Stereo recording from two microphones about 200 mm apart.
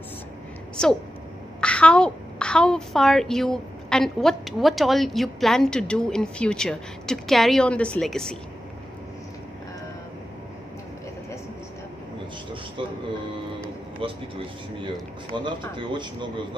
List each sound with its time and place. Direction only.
1.6 s a woman's voice: 5° left (ahead or behind)
13.9 s speech: 25° right (ahead or behind)